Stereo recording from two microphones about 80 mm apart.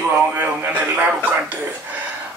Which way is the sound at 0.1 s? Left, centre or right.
Right.